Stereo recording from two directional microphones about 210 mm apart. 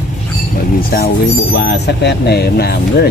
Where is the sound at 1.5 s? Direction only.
50° left (ahead or behind).